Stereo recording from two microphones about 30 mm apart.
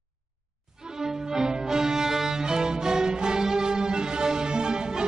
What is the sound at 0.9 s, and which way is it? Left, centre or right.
Music, centre.